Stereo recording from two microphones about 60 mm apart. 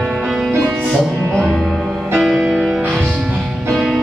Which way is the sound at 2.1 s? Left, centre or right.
Centre.